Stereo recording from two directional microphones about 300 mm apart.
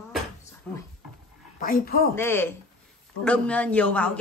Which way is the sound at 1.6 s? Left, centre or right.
Left.